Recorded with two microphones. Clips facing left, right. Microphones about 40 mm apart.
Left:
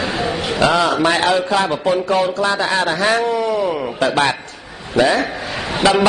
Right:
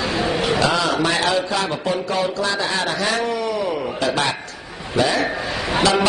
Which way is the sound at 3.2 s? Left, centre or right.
Centre.